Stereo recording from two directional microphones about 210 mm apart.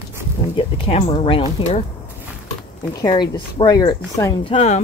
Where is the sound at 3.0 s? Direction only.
20° left (ahead or behind).